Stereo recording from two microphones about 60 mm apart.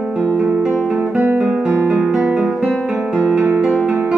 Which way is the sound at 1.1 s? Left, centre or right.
Right.